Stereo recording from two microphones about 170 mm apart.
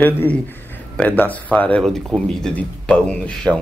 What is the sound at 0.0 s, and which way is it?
A man's voice, 10° left (ahead or behind).